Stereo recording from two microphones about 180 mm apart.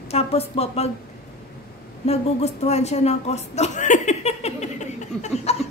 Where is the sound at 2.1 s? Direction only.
35° left (ahead or behind).